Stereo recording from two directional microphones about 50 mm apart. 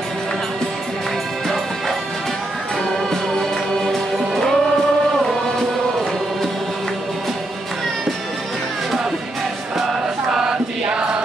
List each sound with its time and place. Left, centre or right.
3.9 s music: centre
10.3 s choir: centre